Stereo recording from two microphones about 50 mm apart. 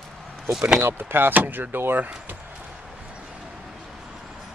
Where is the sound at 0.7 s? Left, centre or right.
Right.